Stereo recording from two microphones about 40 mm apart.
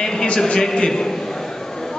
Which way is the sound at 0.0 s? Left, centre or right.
Centre.